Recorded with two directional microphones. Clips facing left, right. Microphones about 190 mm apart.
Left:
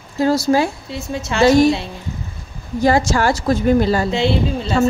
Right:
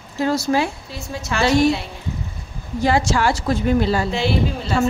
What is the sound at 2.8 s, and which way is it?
Speech, 45° left (ahead or behind).